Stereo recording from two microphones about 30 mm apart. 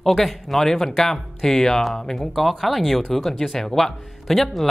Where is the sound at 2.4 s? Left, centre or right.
Centre.